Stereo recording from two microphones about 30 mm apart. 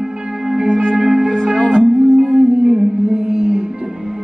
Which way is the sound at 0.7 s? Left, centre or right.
Left.